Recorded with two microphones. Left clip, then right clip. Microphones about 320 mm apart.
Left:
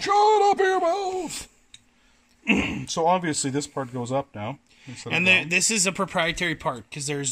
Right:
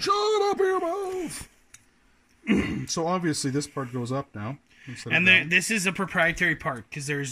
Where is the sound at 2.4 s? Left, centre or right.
Left.